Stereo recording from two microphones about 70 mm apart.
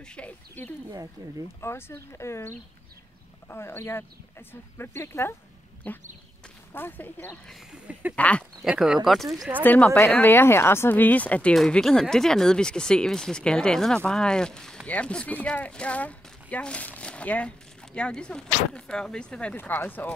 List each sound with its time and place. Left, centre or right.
0.0 s speech: centre
0.6 s speech: left
1.2 s speech: right
1.6 s speech: left
5.9 s speech: left
8.2 s speech: centre
8.6 s speech: centre
9.6 s speech: left
11.8 s speech: centre
19.5 s speech: left